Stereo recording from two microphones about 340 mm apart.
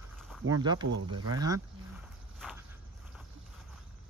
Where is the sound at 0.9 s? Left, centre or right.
Right.